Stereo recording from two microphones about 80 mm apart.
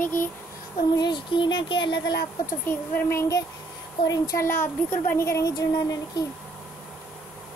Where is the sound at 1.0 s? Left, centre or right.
Left.